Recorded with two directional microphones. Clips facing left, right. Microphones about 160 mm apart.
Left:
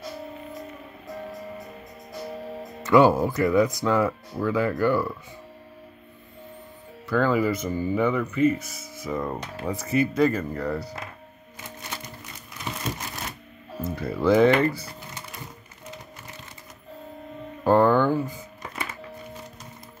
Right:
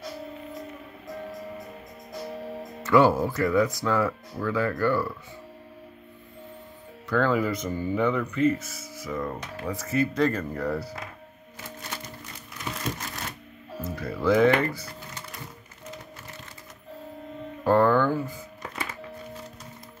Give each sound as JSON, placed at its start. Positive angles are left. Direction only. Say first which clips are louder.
{"t": 2.8, "sound": "speech", "louder": "left 2 dB", "side_deg": 20}
{"t": 7.1, "sound": "speech", "louder": "left 2 dB", "side_deg": 5}
{"t": 13.7, "sound": "speech", "louder": "left 3 dB", "side_deg": 25}
{"t": 17.6, "sound": "music", "louder": "left 2 dB", "side_deg": 15}